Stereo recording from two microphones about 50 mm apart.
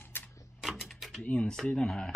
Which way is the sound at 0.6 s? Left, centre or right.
Centre.